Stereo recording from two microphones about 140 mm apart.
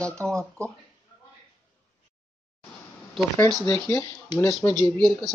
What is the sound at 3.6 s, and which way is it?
Speech, 15° left (ahead or behind).